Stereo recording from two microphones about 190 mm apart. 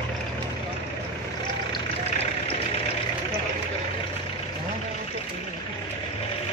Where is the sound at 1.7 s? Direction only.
30° left (ahead or behind).